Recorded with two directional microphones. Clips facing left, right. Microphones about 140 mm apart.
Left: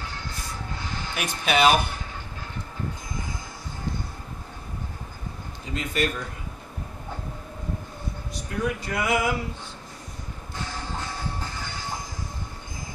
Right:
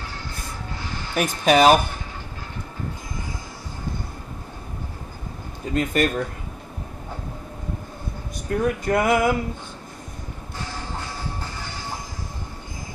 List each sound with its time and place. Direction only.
1.1 s speech: 40° right (ahead or behind)
5.7 s speech: 50° right (ahead or behind)
8.5 s speech: 50° right (ahead or behind)